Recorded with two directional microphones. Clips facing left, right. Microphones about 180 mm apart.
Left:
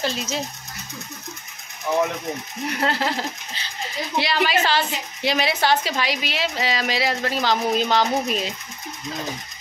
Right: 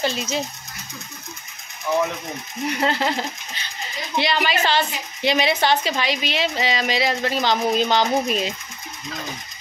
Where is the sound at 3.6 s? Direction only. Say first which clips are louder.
Even; 30° left (ahead or behind).